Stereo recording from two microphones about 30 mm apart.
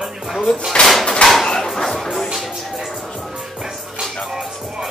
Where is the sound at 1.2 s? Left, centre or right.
Left.